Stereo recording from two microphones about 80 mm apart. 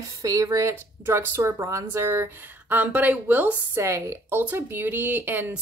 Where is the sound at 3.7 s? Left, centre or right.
Right.